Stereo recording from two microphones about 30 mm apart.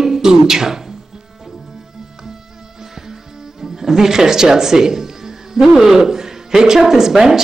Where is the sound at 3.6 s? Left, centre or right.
Centre.